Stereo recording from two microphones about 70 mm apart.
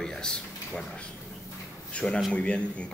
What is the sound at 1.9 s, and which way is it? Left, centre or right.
Speech, centre.